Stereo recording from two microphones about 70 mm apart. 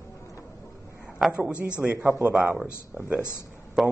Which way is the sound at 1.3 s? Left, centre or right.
Centre.